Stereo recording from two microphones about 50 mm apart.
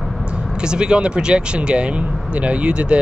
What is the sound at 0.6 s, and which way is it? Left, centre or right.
Speech, centre.